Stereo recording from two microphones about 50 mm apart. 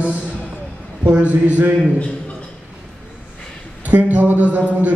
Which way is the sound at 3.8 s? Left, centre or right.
Right.